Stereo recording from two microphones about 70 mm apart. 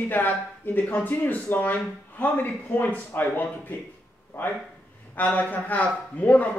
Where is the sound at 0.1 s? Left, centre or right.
Left.